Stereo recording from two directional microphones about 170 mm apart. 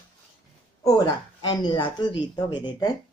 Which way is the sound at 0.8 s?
25° left (ahead or behind).